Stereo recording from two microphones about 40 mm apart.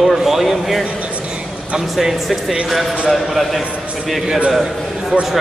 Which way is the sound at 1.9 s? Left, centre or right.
Centre.